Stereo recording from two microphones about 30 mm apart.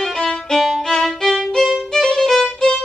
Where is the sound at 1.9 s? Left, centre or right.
Centre.